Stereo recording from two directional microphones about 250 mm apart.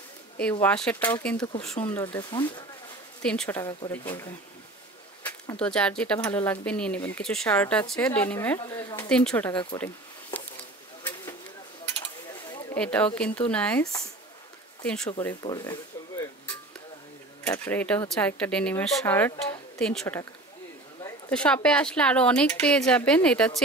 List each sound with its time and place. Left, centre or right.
0.4 s speech: centre
9.1 s speech: centre
12.7 s speech: centre
15.4 s speech: centre
17.4 s speech: centre
21.3 s a woman's voice: centre